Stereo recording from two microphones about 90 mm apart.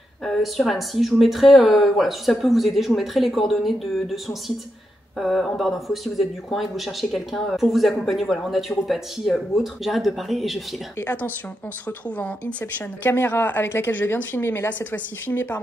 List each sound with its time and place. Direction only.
0.2 s speech: centre (ahead or behind)
11.0 s speech: 20° left (ahead or behind)